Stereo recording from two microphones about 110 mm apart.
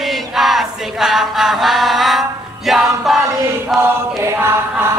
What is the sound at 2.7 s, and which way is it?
Music, centre (ahead or behind).